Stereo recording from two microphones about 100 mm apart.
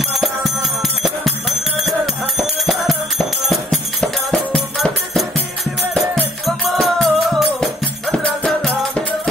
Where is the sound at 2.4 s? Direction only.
Centre (ahead or behind).